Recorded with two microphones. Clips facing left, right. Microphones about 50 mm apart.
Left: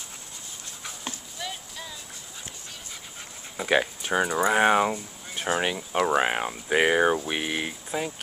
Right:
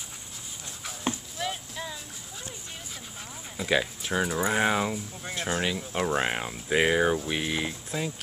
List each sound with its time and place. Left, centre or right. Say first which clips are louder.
1.0 s a sound: right 6 dB; centre
3.6 s speech: left 3 dB; left
4.2 s speech: left 4 dB; centre
4.6 s speech: left 5 dB; centre